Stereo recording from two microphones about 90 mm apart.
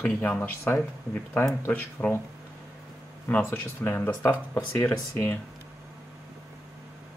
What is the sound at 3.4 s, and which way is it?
Speech, 20° left (ahead or behind).